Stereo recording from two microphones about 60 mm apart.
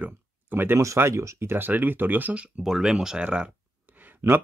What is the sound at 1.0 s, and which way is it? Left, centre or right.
Speech, right.